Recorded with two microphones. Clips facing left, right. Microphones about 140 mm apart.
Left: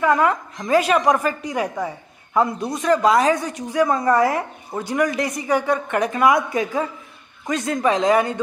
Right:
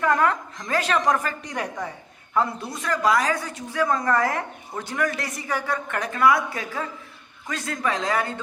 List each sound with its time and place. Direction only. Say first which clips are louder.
0.0 s a man's voice: left 3 dB; 10° left (ahead or behind)